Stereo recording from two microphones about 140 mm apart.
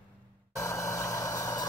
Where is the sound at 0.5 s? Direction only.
20° left (ahead or behind).